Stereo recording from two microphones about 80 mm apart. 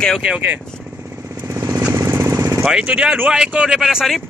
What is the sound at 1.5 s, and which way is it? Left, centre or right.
Motorcycle, right.